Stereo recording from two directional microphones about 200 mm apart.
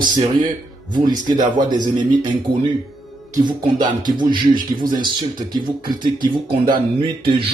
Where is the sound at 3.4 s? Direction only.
20° right (ahead or behind).